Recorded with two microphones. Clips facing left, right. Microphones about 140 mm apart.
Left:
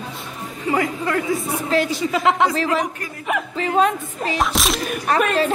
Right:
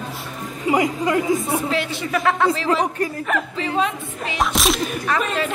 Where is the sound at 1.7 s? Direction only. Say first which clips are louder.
Left 4 dB; 40° left (ahead or behind).